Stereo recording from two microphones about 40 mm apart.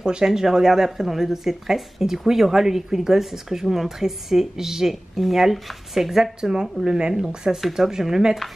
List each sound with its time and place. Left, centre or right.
0.0 s speech: centre
7.6 s speech: centre